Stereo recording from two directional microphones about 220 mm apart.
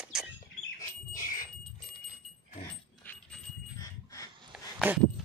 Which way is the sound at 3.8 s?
15° left (ahead or behind).